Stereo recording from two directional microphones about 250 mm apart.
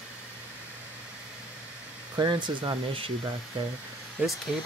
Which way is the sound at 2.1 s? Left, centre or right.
Centre.